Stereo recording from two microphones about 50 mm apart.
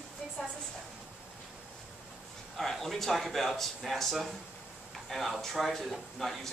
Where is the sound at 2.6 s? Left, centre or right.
Centre.